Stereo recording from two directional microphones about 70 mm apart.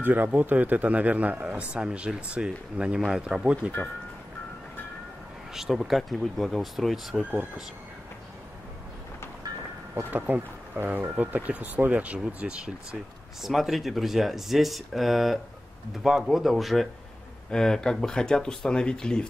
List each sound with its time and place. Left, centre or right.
0.0 s a man's voice: right
5.5 s speech: centre
7.2 s a man's voice: right
10.1 s a man's voice: right
13.4 s speech: centre